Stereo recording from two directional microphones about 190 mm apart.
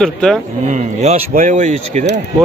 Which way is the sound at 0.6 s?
40° right (ahead or behind).